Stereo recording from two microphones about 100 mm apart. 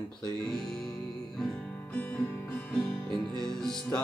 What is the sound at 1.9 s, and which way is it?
Music, 20° left (ahead or behind).